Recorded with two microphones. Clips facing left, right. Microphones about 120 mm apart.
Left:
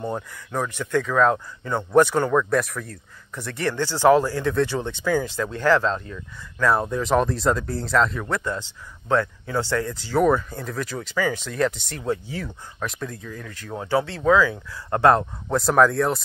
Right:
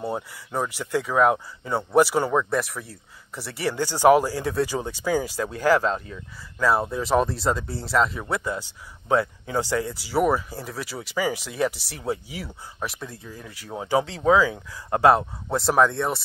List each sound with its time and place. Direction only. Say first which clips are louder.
0.0 s speech: even; 10° right (ahead or behind)
13.2 s speech: left 3 dB; 30° right (ahead or behind)
13.5 s speech: even; 10° right (ahead or behind)
15.4 s speech: left 3 dB; centre (ahead or behind)